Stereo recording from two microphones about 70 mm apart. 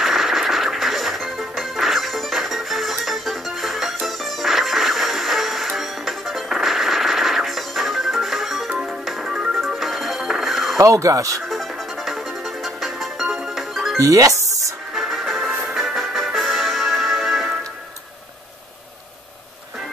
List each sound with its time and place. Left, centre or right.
0.0 s music: centre
10.8 s speech: right
11.4 s music: centre
13.9 s speech: right
15.0 s music: centre